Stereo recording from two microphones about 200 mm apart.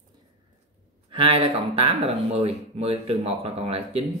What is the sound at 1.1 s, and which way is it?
Speech, 25° right (ahead or behind).